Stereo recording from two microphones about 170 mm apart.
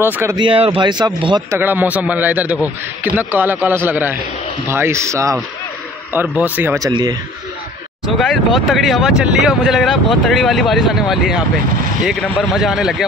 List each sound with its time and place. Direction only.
0.0 s a man's voice: 15° right (ahead or behind)
0.4 s speech: 30° right (ahead or behind)
1.5 s a man's voice: 10° right (ahead or behind)
6.9 s speech: 25° right (ahead or behind)
8.5 s speech: centre (ahead or behind)